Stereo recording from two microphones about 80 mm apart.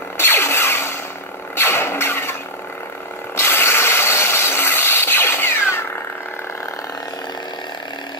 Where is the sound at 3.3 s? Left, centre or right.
Left.